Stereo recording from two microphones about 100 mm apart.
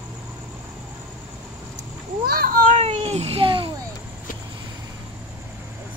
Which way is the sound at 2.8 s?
90° right.